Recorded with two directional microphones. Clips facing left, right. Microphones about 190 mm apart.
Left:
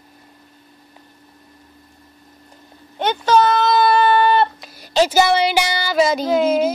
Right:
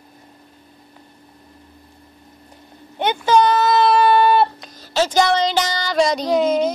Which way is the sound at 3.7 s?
Centre (ahead or behind).